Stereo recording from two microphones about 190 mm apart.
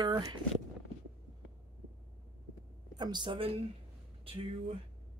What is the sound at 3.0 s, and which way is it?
Speech, 25° right (ahead or behind).